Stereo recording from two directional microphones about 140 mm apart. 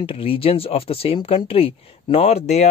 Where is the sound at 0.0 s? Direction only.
40° left (ahead or behind).